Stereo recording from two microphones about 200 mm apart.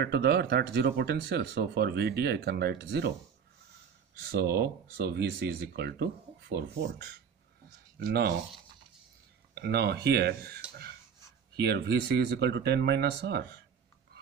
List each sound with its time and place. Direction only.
0.0 s speech: 55° right (ahead or behind)
4.3 s speech: 55° right (ahead or behind)
8.0 s speech: 50° right (ahead or behind)
9.6 s speech: 55° right (ahead or behind)